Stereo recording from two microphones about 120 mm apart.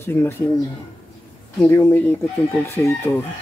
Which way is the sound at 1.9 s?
15° left (ahead or behind).